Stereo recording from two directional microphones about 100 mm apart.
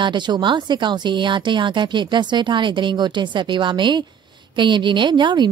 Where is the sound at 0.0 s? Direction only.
50° right (ahead or behind).